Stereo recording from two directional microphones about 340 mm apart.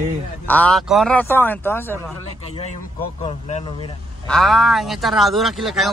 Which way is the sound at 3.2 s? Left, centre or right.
Centre.